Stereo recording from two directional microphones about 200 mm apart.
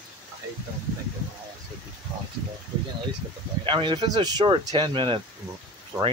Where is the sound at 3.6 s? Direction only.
25° right (ahead or behind).